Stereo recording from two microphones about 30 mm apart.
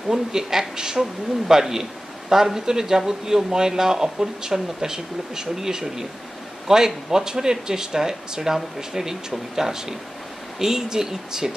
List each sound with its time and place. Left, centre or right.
0.1 s a man's voice: centre